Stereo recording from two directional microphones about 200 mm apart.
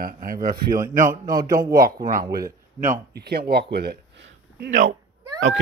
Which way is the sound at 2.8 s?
50° right (ahead or behind).